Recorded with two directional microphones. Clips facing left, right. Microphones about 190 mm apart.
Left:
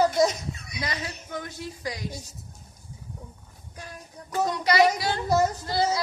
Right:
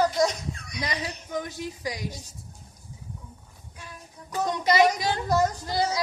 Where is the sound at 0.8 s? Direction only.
15° right (ahead or behind).